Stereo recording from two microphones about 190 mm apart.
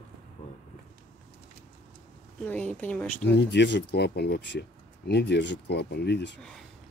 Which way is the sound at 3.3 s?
65° left (ahead or behind).